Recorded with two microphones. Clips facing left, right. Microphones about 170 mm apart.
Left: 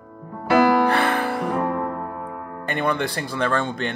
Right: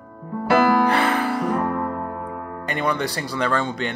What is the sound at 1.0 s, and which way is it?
Music, 50° left (ahead or behind).